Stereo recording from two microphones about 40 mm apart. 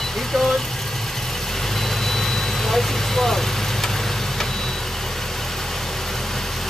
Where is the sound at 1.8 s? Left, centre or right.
Centre.